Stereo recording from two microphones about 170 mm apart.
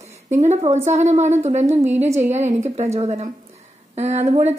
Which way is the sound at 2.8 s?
40° right (ahead or behind).